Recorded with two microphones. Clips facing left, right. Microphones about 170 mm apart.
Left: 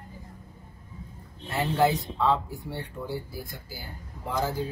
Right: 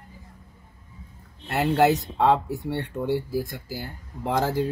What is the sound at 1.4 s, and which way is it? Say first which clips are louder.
Speech: right 4 dB; 75° right (ahead or behind).